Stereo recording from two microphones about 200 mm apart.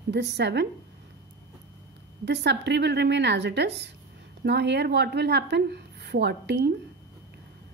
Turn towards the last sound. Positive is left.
turn(degrees=-55)  # may be behind; listen again after turning